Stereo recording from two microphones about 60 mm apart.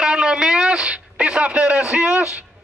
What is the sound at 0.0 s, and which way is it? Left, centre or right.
Speech, centre.